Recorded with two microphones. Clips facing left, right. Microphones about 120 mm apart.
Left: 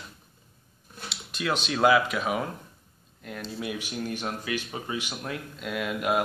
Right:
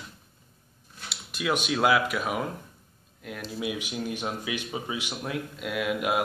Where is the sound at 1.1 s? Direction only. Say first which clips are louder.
Right 1 dB; 5° right (ahead or behind).